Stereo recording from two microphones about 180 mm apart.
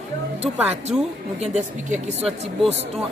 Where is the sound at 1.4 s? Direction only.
40° right (ahead or behind).